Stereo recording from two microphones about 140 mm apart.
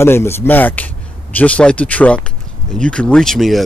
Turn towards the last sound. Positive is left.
turn(degrees=0)  # may be behind; listen again after turning